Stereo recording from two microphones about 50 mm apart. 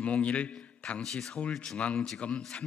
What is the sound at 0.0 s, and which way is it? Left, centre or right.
A man's voice, left.